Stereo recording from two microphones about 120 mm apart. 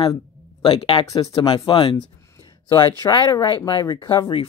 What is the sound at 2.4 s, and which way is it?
Speech, 35° left (ahead or behind).